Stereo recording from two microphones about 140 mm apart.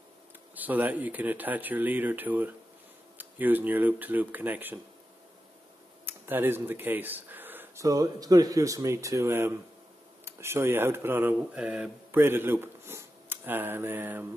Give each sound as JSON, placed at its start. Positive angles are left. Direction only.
{"t": 0.6, "sound": "speech", "side_deg": -10}
{"t": 6.0, "sound": "speech", "side_deg": -15}